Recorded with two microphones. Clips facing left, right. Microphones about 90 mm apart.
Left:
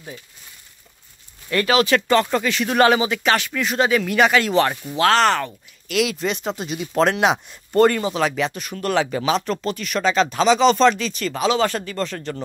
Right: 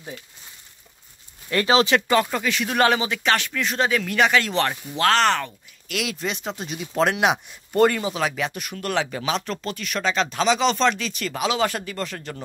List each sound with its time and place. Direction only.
1.5 s speech: 25° right (ahead or behind)
2.0 s speech: 15° right (ahead or behind)
2.2 s speech: centre (ahead or behind)